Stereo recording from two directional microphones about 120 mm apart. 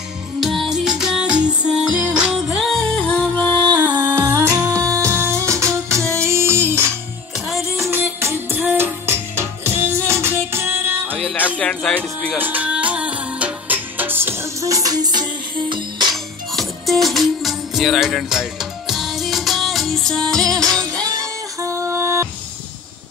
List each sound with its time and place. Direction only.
0.4 s music: centre (ahead or behind)
3.0 s music: 10° left (ahead or behind)
3.7 s music: 10° right (ahead or behind)
4.1 s humming: 25° right (ahead or behind)
7.3 s music: centre (ahead or behind)
7.7 s music: 20° right (ahead or behind)
11.1 s music: 5° left (ahead or behind)
12.4 s music: 15° right (ahead or behind); by 15.2 s 35° right (ahead or behind)
16.5 s music: centre (ahead or behind)
20.4 s music: 30° right (ahead or behind)